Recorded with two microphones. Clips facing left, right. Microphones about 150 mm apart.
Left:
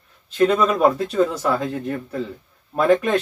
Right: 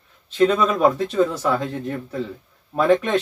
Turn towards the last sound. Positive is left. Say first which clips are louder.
# even
turn(degrees=5)  # may be behind; listen again after turning